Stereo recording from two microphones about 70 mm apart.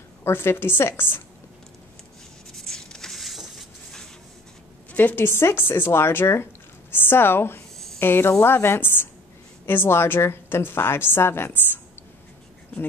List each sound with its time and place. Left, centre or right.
0.2 s a woman's voice: left
2.5 s a sound: centre
4.9 s a woman's voice: left